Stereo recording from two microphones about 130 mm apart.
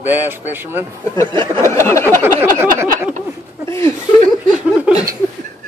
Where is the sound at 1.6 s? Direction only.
20° left (ahead or behind).